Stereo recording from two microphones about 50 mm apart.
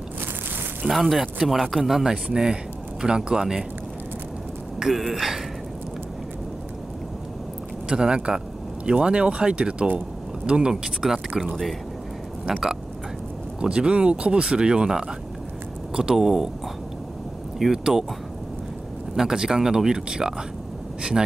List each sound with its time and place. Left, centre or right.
0.8 s speech: centre
4.7 s speech: centre
7.9 s speech: centre
12.4 s speech: centre
13.6 s speech: centre
17.6 s speech: centre
19.1 s speech: centre